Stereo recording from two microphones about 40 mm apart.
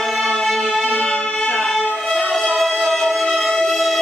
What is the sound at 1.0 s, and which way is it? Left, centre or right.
Music, left.